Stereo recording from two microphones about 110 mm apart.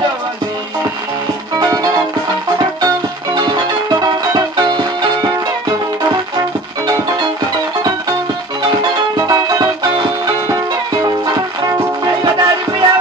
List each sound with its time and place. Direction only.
1.6 s music: 35° right (ahead or behind)
3.3 s music: 40° right (ahead or behind)
8.6 s music: 35° right (ahead or behind)
12.2 s music: 35° right (ahead or behind)